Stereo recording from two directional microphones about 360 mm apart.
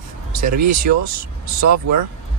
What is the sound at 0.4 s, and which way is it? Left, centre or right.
Speech, right.